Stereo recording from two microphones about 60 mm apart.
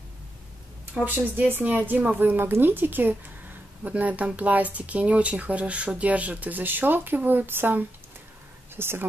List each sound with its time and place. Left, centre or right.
1.0 s speech: right